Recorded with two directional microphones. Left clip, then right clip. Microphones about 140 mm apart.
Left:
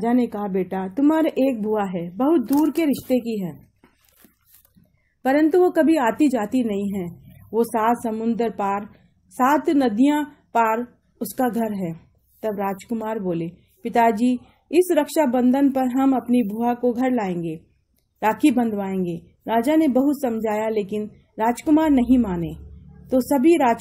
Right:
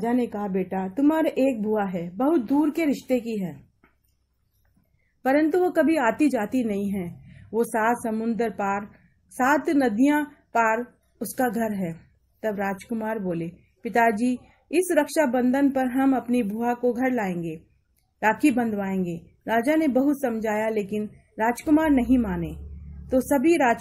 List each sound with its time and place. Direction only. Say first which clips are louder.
0.0 s a woman's voice: left 4 dB; 35° left (ahead or behind)
5.2 s a woman's voice: left 4 dB; 30° left (ahead or behind)
23.0 s a woman's voice: left 3 dB; 25° left (ahead or behind)